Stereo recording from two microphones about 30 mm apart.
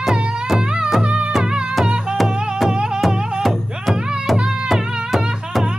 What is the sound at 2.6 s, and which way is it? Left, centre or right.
Music, right.